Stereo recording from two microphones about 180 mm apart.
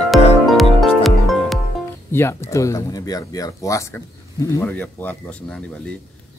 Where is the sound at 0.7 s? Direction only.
Centre (ahead or behind).